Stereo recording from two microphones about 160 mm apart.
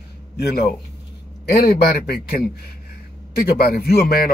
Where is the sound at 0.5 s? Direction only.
75° left (ahead or behind).